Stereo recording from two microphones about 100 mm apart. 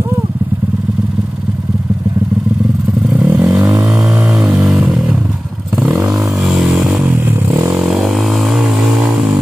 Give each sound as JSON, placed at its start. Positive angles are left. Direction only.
{"t": 3.2, "sound": "vehicle", "side_deg": -10}
{"t": 4.4, "sound": "a sound", "side_deg": -5}
{"t": 5.8, "sound": "vehicle", "side_deg": -10}